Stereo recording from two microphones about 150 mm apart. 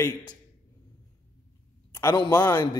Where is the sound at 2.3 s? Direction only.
15° left (ahead or behind).